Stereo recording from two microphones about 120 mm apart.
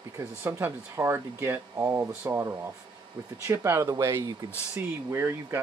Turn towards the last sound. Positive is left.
turn(degrees=-20)  # may be behind; listen again after turning